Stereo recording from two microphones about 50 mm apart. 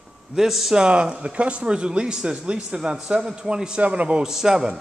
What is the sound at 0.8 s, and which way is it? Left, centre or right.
Speech, centre.